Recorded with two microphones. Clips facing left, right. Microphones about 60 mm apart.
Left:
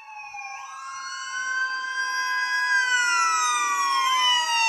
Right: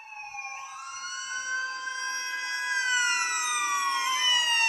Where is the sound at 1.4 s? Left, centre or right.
Left.